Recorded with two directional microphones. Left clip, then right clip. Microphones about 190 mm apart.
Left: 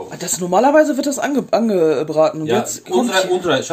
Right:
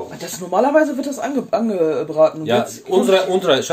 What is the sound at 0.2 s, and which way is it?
Speech, 45° left (ahead or behind).